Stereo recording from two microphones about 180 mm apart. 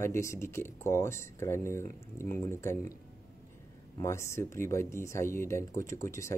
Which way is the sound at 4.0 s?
15° left (ahead or behind).